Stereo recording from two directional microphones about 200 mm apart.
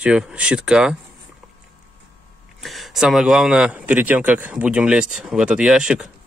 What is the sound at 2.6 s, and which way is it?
A man's voice, centre (ahead or behind).